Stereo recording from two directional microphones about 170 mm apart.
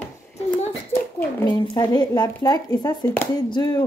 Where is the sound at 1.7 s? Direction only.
25° left (ahead or behind).